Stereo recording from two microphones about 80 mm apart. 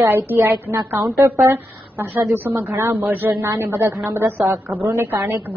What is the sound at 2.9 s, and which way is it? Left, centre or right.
A woman's voice, right.